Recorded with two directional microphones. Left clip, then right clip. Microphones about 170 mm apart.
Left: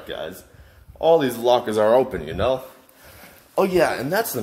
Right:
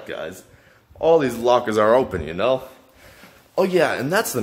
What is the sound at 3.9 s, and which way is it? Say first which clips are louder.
Speech: right 1 dB; 20° right (ahead or behind).